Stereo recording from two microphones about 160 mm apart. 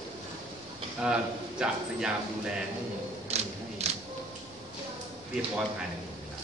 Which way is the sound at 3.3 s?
40° right (ahead or behind).